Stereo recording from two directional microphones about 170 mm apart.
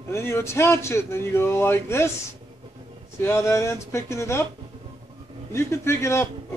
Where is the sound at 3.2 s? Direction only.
15° left (ahead or behind).